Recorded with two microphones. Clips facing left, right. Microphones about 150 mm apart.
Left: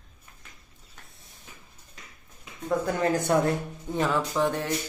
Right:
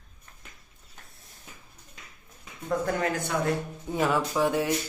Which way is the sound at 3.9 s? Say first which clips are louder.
Even; 10° right (ahead or behind).